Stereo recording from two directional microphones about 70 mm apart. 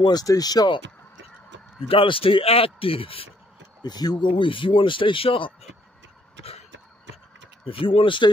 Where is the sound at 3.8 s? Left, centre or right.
Left.